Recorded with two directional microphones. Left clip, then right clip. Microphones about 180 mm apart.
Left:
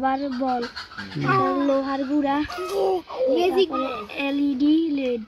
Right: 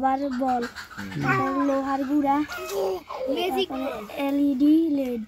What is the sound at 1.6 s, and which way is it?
Speech, 25° right (ahead or behind).